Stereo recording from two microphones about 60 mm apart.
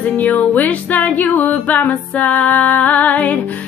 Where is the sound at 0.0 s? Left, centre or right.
Left.